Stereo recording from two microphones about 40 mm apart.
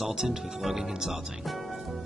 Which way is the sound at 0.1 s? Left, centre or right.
Centre.